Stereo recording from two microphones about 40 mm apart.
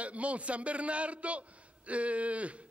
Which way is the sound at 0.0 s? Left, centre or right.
Right.